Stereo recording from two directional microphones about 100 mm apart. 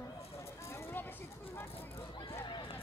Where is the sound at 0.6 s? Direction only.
30° left (ahead or behind).